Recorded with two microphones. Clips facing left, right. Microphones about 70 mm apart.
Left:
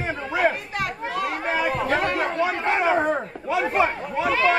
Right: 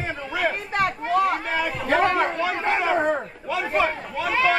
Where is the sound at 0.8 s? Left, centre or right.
Right.